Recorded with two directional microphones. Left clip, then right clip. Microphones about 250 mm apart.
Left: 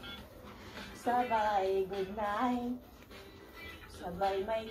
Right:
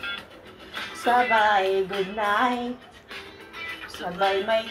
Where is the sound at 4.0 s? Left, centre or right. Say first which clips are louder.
Right 10 dB; right.